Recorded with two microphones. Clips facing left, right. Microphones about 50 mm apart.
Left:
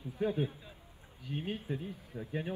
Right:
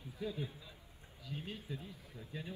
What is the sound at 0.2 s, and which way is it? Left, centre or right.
Speech, left.